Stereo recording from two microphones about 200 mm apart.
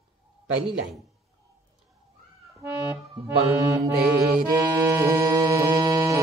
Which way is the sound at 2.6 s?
15° right (ahead or behind).